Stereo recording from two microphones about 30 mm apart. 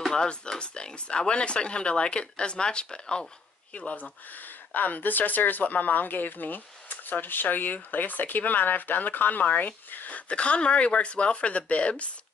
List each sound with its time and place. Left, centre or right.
0.6 s speech: left
4.7 s speech: left
9.8 s a sound: left
10.1 s speech: left